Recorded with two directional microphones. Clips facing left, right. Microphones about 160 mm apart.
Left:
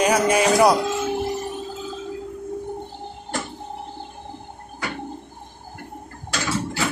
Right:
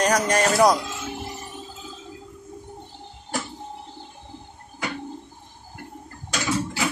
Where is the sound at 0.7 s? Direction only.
65° left (ahead or behind).